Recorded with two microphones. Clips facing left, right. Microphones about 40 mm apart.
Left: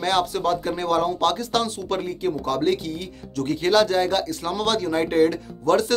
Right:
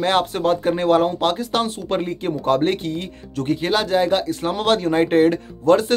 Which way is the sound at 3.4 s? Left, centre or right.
Right.